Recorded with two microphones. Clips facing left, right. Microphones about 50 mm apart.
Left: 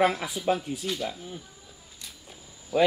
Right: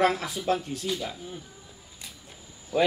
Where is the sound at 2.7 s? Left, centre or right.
Centre.